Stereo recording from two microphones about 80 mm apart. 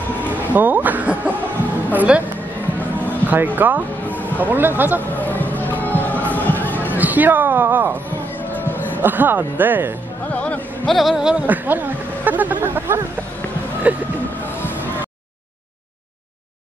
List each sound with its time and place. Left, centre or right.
0.3 s speech: right
3.3 s speech: right
5.1 s music: left
6.9 s speech: right
9.0 s speech: right
10.3 s music: centre
10.9 s speech: centre
11.4 s speech: right
14.6 s a sound: left